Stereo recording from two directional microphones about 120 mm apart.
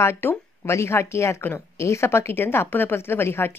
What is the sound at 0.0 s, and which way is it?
Speech, 20° left (ahead or behind).